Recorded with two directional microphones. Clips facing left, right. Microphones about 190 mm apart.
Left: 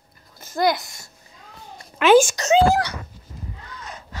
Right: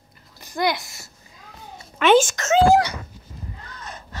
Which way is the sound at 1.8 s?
5° left (ahead or behind).